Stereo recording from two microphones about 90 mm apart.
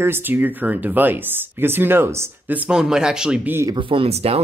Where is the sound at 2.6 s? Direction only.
5° right (ahead or behind).